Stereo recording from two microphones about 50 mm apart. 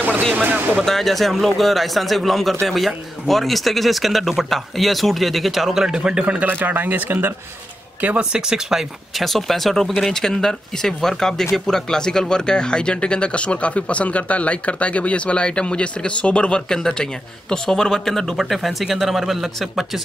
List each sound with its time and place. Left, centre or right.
0.3 s speech: right
0.8 s speech: centre
6.4 s speech: right
8.2 s speech: centre
9.2 s speech: centre